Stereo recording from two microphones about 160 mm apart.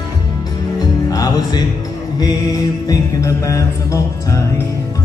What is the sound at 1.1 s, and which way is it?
Music, 20° left (ahead or behind).